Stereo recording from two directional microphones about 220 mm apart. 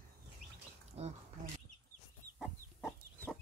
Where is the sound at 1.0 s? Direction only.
25° right (ahead or behind).